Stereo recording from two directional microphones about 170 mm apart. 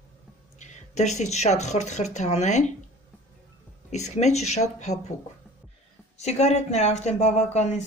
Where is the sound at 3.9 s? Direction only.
40° left (ahead or behind).